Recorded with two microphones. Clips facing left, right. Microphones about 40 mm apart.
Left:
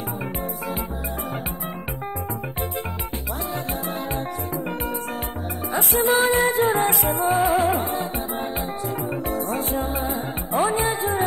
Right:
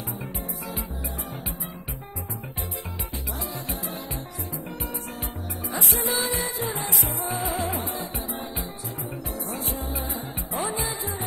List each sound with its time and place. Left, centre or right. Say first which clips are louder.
5.7 s music: left 8 dB; left
9.3 s music: left 7 dB; left